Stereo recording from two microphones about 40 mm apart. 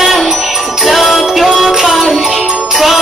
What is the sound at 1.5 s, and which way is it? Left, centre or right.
Music, centre.